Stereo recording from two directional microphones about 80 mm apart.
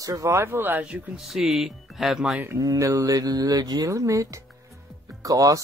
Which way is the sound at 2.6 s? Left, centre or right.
Right.